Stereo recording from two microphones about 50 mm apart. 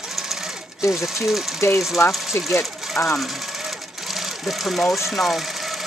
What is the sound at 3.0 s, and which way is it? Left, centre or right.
Speech, left.